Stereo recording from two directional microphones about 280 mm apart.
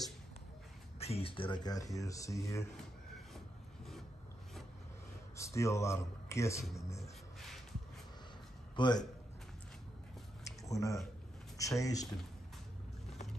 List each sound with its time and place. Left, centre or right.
0.9 s speech: left
3.3 s rub: centre
5.4 s speech: centre
8.7 s a man's voice: centre
10.4 s a sound: centre
11.5 s speech: centre